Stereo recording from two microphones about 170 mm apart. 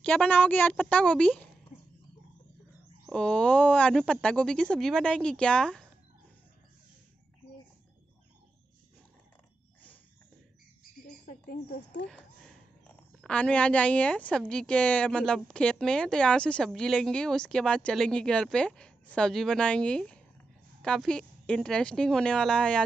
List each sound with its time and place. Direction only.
0.0 s a woman's voice: 5° left (ahead or behind)
3.1 s a woman's voice: 5° left (ahead or behind)
11.2 s speech: 60° left (ahead or behind)
12.1 s a woman's voice: 5° left (ahead or behind)